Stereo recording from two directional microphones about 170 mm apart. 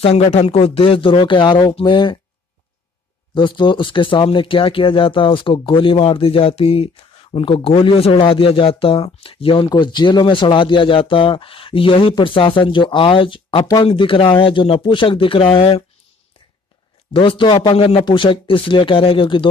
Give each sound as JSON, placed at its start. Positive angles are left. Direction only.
{"t": 0.0, "sound": "speech", "side_deg": 40}
{"t": 3.3, "sound": "speech", "side_deg": 30}
{"t": 17.1, "sound": "speech", "side_deg": 30}